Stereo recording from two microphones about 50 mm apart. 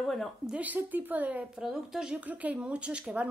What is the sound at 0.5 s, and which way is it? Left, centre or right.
Speech, right.